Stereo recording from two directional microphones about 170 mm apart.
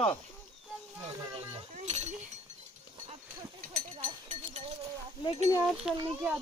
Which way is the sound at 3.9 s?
30° right (ahead or behind).